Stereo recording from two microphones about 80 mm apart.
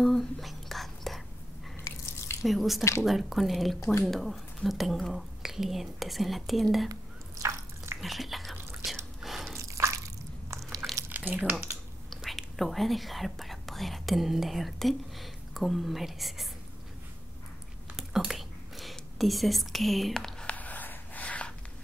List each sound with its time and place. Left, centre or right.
0.0 s whispering: centre
1.9 s drip: left
2.4 s speech: centre
7.4 s drip: right
8.0 s speech: centre
8.8 s a sound: centre
9.6 s drip: right
11.1 s a sound: right
12.1 s speech: centre
17.9 s whispering: centre
20.5 s a sound: centre